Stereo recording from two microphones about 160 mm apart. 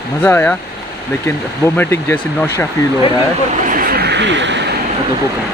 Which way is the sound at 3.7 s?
65° right (ahead or behind).